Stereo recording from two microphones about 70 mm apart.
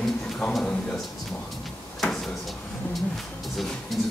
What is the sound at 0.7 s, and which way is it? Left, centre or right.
Speech, centre.